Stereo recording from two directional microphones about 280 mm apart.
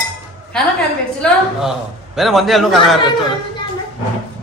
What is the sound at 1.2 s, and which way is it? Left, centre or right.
A man's voice, centre.